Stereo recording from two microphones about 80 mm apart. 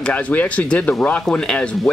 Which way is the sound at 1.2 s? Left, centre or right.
Centre.